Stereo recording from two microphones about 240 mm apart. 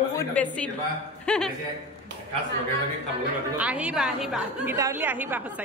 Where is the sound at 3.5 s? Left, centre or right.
Centre.